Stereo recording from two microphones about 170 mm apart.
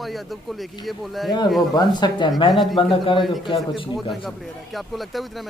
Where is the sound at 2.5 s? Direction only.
Centre (ahead or behind).